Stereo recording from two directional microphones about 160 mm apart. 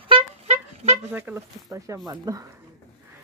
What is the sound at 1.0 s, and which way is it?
Speech, 15° right (ahead or behind).